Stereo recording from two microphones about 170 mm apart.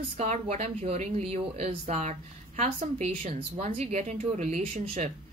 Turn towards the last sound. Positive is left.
turn(degrees=-35)  # may be behind; listen again after turning